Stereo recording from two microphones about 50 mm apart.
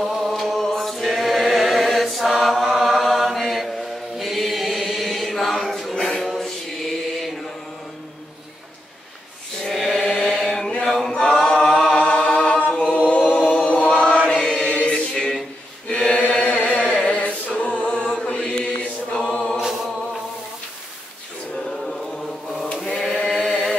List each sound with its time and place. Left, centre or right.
0.3 s choir: centre
4.2 s chant: centre
9.7 s chant: centre
11.1 s choir: centre
11.3 s a capella: centre
13.5 s choir: left
13.8 s chant: left
15.1 s a sound: centre
15.9 s chant: centre
17.6 s music: left
17.8 s mantra: centre
19.5 s a capella: centre
21.6 s chant: centre
23.1 s chant: centre